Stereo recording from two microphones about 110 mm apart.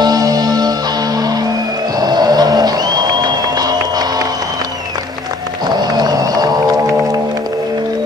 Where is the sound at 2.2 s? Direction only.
40° right (ahead or behind).